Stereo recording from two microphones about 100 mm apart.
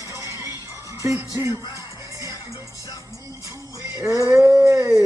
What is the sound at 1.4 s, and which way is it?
Music, 35° right (ahead or behind).